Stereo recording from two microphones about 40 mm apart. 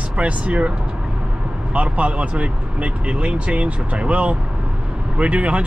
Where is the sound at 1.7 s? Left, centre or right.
Right.